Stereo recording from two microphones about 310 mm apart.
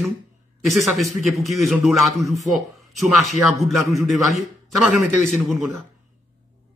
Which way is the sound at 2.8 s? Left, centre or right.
Centre.